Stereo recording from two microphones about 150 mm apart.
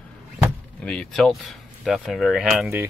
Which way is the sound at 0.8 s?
5° left (ahead or behind).